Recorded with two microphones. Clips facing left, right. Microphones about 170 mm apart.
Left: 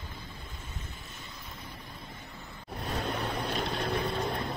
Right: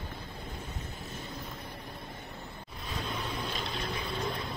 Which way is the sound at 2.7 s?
60° left (ahead or behind).